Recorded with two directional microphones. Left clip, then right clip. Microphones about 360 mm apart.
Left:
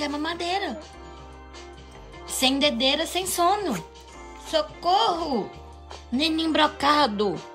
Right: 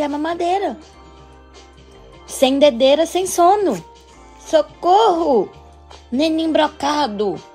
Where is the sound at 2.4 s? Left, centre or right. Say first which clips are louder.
Right 9 dB; centre.